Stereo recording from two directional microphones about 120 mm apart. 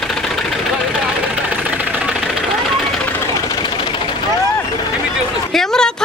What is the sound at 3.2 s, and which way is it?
Vehicle, 30° left (ahead or behind).